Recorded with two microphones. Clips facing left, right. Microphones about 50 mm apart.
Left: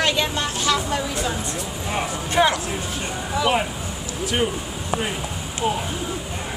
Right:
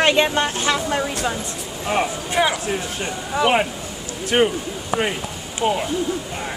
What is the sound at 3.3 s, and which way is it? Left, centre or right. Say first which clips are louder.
Speech: right 3 dB; right.